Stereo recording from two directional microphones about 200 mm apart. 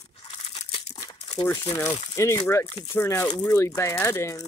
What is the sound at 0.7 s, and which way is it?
Crumpling, 30° left (ahead or behind).